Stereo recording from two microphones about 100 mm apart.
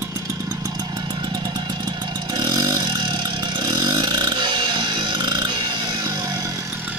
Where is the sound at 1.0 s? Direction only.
50° right (ahead or behind).